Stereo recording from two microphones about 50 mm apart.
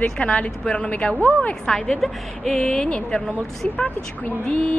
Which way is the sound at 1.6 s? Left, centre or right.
Centre.